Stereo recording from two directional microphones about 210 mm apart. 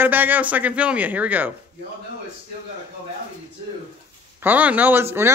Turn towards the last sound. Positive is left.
turn(degrees=-10)  # may be behind; listen again after turning